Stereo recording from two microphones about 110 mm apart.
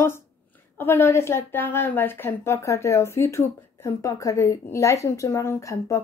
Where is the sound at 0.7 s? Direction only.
20° left (ahead or behind).